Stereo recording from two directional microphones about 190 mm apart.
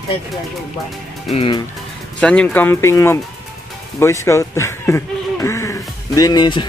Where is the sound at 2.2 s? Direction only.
5° left (ahead or behind); by 6.7 s 25° left (ahead or behind).